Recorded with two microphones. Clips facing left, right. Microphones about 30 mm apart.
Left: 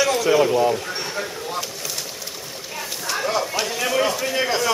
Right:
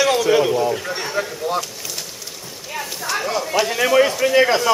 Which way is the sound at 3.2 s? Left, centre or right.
Centre.